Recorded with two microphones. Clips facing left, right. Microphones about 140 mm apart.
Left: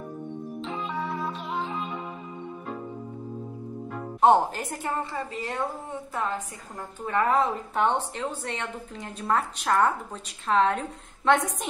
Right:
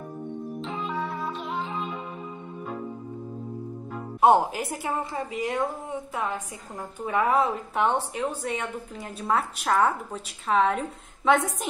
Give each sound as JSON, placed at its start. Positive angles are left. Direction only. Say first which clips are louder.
{"t": 0.7, "sound": "music", "louder": "even", "side_deg": 0}
{"t": 4.2, "sound": "a woman's voice", "louder": "even", "side_deg": -10}